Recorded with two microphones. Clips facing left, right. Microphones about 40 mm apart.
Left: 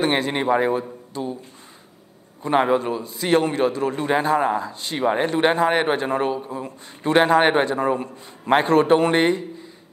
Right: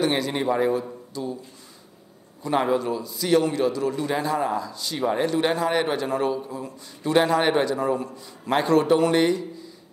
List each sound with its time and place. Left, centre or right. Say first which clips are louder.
0.0 s a man's voice: left 2 dB; left
2.4 s a man's voice: left 3 dB; left